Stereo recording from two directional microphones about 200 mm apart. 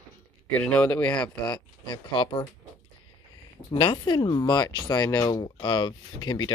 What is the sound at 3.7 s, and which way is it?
Speech, 25° left (ahead or behind).